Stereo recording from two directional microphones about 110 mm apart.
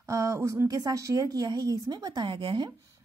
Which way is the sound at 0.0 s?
30° right (ahead or behind).